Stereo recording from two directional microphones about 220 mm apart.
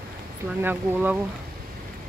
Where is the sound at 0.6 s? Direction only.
10° right (ahead or behind).